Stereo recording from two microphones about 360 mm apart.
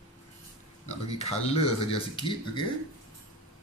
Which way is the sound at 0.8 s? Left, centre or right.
Centre.